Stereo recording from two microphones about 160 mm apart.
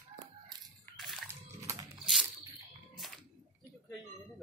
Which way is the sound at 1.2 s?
20° right (ahead or behind).